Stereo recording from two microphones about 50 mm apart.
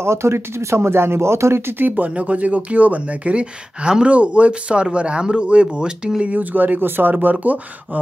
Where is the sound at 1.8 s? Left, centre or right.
Right.